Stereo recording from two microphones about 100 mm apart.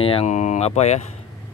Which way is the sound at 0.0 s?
80° left.